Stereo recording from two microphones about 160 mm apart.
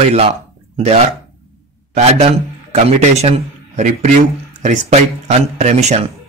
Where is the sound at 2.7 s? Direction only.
40° right (ahead or behind).